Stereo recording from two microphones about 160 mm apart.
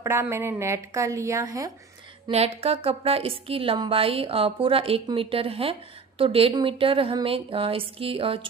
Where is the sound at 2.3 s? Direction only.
40° right (ahead or behind).